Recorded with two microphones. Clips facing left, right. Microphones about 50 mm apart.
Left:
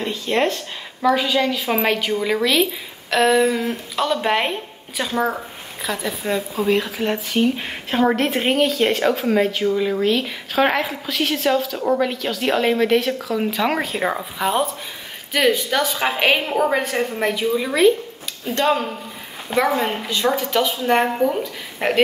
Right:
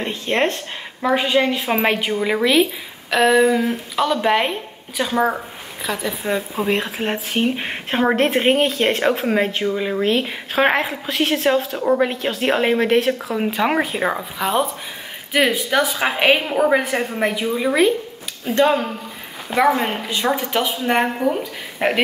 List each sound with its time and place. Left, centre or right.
0.0 s a woman's voice: centre
5.1 s a woman's voice: centre
5.9 s speech: centre
6.5 s a woman's voice: right
10.0 s speech: right
13.6 s speech: centre
15.3 s a woman's voice: centre